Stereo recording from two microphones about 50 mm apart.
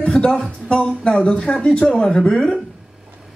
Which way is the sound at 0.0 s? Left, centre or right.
Left.